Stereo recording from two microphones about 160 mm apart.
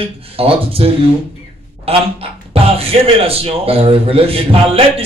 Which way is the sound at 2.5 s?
35° right (ahead or behind).